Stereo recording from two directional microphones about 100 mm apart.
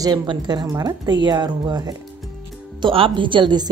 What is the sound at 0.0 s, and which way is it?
A woman's voice, 45° right (ahead or behind).